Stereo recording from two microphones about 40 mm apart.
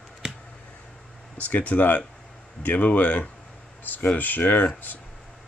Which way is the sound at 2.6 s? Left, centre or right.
Left.